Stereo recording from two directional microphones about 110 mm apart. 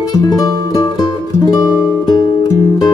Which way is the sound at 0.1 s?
35° left (ahead or behind).